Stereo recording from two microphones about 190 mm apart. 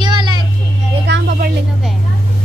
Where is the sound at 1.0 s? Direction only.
60° right (ahead or behind).